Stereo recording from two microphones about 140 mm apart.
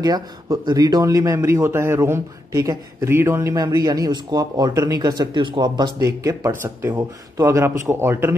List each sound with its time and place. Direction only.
0.0 s speech: 30° right (ahead or behind)
3.5 s speech: 25° right (ahead or behind)